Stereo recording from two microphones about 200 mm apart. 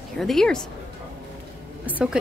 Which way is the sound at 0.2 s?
Centre (ahead or behind).